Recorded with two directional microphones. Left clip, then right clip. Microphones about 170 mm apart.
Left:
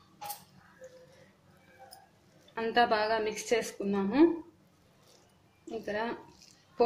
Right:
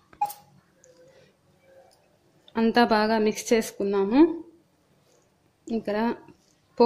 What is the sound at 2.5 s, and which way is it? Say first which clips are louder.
Speech: right 6 dB; 60° right (ahead or behind).